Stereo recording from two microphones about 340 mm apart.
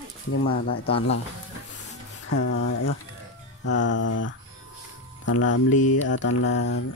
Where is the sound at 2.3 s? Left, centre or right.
Left.